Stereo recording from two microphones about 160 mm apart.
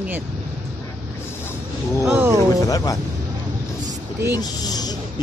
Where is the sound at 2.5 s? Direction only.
20° left (ahead or behind).